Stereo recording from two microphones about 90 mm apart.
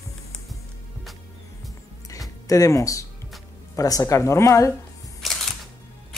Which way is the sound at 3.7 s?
40° left (ahead or behind).